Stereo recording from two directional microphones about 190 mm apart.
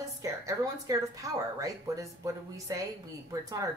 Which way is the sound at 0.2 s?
15° right (ahead or behind).